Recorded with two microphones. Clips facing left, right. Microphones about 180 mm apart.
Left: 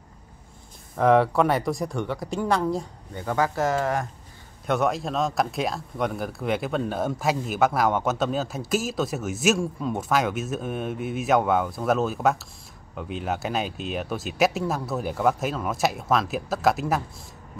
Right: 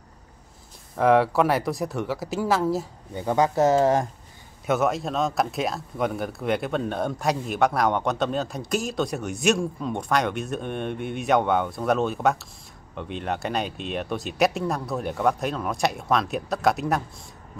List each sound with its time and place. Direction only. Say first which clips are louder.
0.9 s speech: even; centre (ahead or behind)
3.2 s speech: right 4 dB; 20° right (ahead or behind)
4.6 s speech: right 1 dB; centre (ahead or behind)